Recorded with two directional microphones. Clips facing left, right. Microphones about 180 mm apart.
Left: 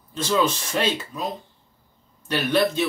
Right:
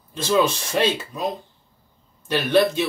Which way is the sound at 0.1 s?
15° right (ahead or behind).